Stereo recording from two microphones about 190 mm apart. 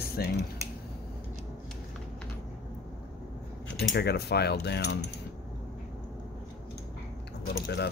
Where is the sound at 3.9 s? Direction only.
60° left (ahead or behind).